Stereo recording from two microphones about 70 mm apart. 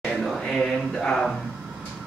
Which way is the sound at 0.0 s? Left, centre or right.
Centre.